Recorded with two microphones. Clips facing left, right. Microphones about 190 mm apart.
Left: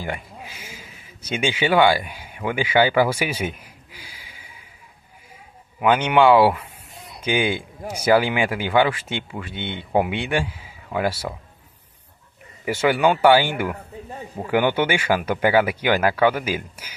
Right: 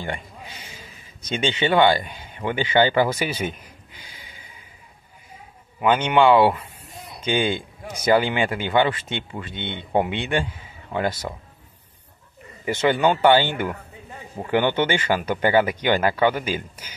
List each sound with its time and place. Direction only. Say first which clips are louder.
0.0 s speech: left 1 dB; 5° left (ahead or behind)
5.8 s speech: left 1 dB; 10° left (ahead or behind)
12.6 s speech: left 1 dB; 10° left (ahead or behind)